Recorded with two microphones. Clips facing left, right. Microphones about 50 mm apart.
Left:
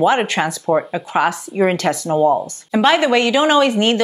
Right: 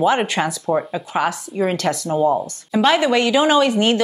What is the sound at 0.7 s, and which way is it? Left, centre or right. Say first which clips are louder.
A woman's voice: left 3 dB; centre.